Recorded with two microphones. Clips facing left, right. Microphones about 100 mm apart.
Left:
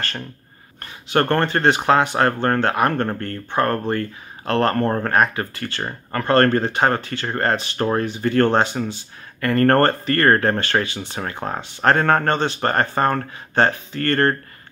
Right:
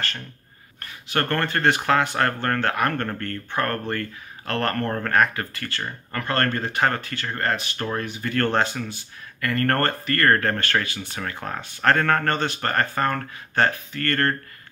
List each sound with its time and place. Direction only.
0.7 s speech: 25° left (ahead or behind)
5.8 s speech: 35° left (ahead or behind)